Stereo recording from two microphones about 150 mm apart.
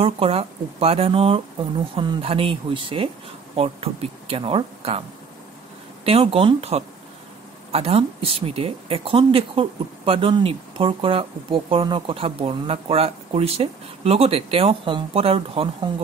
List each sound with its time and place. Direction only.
0.0 s speech: 40° right (ahead or behind)
6.0 s speech: 40° right (ahead or behind)